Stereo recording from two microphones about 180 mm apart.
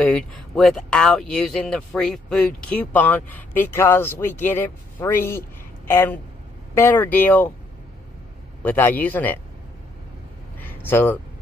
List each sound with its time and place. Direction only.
0.0 s a woman's voice: 5° left (ahead or behind)
8.6 s speech: 10° left (ahead or behind)
10.6 s a sound: 10° left (ahead or behind)